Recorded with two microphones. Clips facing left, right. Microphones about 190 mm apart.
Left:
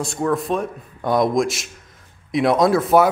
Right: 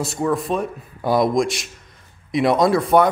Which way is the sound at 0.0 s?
Centre (ahead or behind).